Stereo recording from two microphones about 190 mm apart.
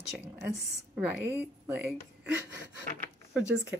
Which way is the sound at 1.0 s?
10° right (ahead or behind).